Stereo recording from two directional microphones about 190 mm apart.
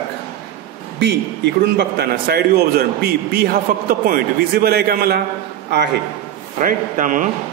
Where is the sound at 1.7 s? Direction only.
60° right (ahead or behind).